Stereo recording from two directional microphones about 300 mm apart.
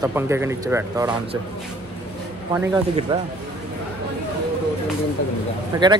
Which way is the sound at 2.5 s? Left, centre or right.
Centre.